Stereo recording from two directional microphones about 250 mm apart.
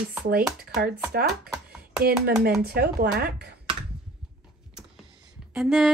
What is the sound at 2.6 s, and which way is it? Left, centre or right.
Speech, right.